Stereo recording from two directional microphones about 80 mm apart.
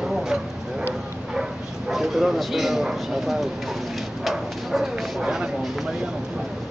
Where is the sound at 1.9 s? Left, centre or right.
Centre.